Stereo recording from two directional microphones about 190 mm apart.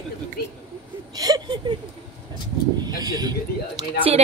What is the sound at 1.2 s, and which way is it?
Speech, 20° right (ahead or behind).